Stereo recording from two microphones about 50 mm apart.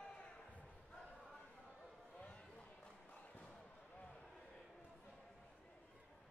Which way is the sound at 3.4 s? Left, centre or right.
Centre.